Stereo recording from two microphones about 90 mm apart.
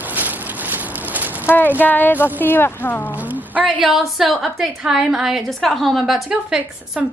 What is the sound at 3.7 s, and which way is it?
A woman's voice, centre (ahead or behind).